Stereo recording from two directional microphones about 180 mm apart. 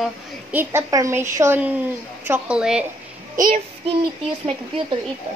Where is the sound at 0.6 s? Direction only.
15° right (ahead or behind).